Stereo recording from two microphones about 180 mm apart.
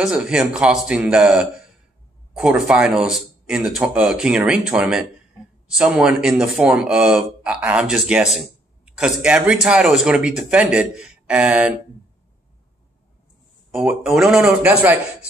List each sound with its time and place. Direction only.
0.0 s speech: 5° right (ahead or behind)
13.7 s speech: 5° right (ahead or behind)